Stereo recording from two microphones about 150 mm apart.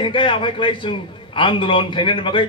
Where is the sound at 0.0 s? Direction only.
35° left (ahead or behind).